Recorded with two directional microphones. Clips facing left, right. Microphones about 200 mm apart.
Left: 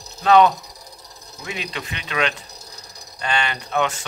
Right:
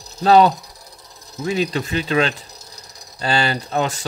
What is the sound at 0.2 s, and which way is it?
Speech, 35° right (ahead or behind).